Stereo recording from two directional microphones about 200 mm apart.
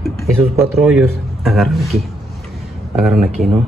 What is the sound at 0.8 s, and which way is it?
Speech, 5° right (ahead or behind).